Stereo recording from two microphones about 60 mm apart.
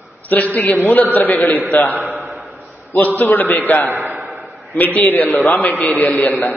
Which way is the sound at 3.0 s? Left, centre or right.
Left.